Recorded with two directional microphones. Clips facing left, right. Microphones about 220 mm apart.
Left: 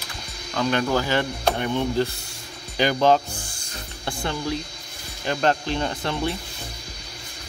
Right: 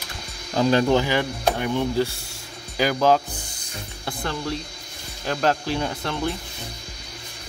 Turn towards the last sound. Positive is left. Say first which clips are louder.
# even
turn(degrees=0)  # may be behind; listen again after turning